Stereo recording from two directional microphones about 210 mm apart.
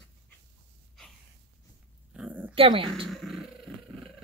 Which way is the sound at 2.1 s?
5° right (ahead or behind).